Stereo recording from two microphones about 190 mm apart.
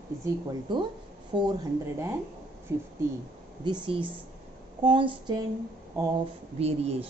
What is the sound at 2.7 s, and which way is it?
Speech, 15° right (ahead or behind).